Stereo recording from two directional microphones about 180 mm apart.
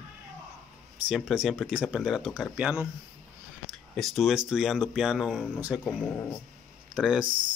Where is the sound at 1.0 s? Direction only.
Centre (ahead or behind).